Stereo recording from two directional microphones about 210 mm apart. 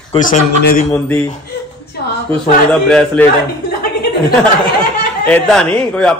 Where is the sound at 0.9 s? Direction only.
10° left (ahead or behind).